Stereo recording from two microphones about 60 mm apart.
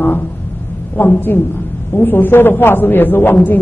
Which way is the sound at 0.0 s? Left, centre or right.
Left.